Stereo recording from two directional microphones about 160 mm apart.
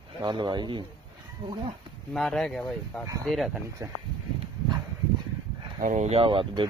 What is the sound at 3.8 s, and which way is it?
Speech, 20° right (ahead or behind).